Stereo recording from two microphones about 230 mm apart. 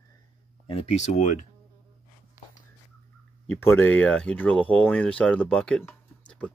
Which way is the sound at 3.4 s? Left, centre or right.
Centre.